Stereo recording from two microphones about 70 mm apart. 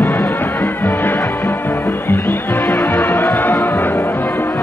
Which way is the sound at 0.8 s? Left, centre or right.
Left.